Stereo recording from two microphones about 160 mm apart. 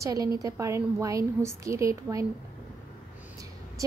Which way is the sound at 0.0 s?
20° right (ahead or behind).